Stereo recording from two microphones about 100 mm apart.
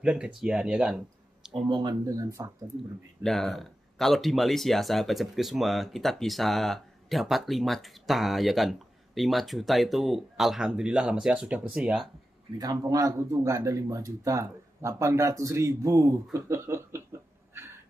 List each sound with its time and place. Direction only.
0.0 s speech: 10° right (ahead or behind)
1.7 s speech: 50° right (ahead or behind)
2.0 s speech: 35° right (ahead or behind)
3.3 s speech: centre (ahead or behind)
12.5 s speech: 35° right (ahead or behind)